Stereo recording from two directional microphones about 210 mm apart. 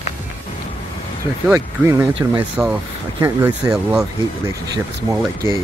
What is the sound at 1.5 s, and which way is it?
Speech, 15° right (ahead or behind).